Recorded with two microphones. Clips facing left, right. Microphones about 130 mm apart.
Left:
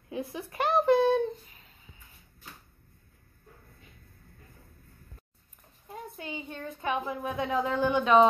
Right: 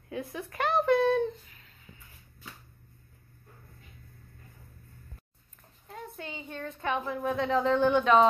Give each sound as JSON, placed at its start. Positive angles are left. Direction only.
{"t": 0.1, "sound": "speech", "side_deg": 25}
{"t": 5.9, "sound": "a woman's voice", "side_deg": 10}